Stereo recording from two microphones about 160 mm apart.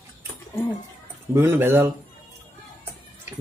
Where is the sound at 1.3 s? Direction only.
15° right (ahead or behind).